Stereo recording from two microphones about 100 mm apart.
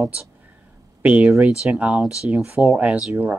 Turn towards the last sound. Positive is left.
turn(degrees=-10)  # may be behind; listen again after turning